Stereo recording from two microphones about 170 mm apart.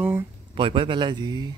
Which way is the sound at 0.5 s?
30° right (ahead or behind).